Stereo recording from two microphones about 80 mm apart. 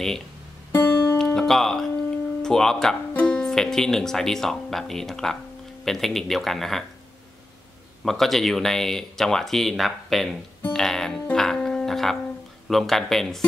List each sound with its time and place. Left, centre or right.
0.7 s music: left
1.1 s music: centre
2.4 s speech: centre
3.1 s speech: centre
8.0 s speech: centre
11.3 s music: centre
12.6 s speech: centre